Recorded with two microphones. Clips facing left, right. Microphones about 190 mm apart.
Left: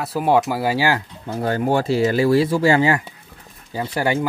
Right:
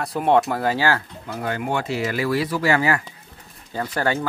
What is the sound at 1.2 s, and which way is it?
Speech, 35° left (ahead or behind).